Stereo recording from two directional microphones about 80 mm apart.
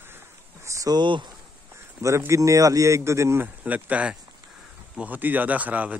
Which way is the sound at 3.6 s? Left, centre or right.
Centre.